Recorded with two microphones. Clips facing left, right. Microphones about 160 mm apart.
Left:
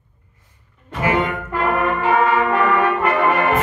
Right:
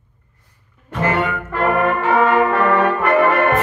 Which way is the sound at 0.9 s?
10° left (ahead or behind).